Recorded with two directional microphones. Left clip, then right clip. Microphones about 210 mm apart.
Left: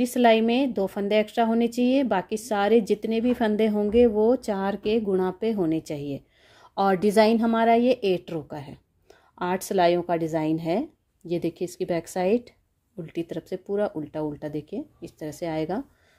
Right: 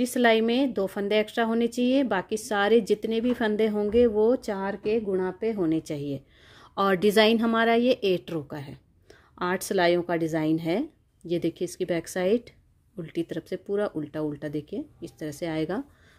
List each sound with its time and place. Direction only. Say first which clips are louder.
0.0 s a woman's voice: left 2 dB; centre (ahead or behind)